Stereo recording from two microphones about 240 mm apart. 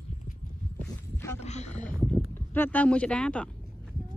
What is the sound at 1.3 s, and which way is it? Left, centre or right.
Wild animals, left.